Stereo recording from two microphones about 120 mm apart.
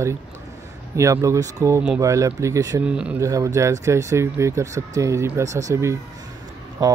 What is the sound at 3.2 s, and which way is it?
Speech, 30° right (ahead or behind).